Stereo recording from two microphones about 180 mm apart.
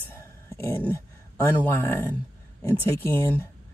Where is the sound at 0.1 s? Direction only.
15° left (ahead or behind).